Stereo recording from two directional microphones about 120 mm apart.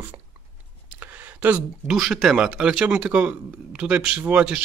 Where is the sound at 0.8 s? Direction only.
15° right (ahead or behind).